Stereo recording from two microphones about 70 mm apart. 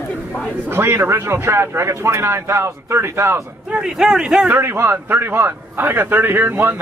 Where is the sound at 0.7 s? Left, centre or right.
Right.